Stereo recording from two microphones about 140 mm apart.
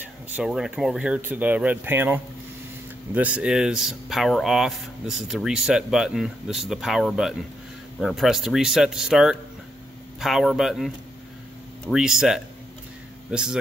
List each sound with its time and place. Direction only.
0.4 s speech: 5° right (ahead or behind)